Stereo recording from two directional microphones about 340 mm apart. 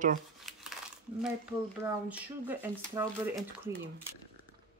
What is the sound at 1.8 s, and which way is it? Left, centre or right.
Speech, centre.